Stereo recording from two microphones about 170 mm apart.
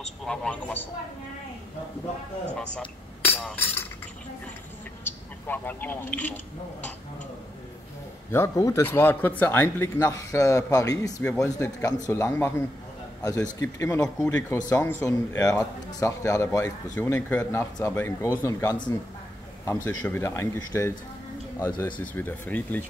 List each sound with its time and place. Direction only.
0.2 s speech: 5° left (ahead or behind)
3.3 s chink: 10° left (ahead or behind)
5.0 s a man's voice: 10° left (ahead or behind)
8.3 s speech: 15° left (ahead or behind)